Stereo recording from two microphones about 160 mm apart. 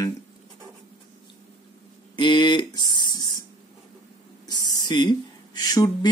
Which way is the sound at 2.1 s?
30° left (ahead or behind).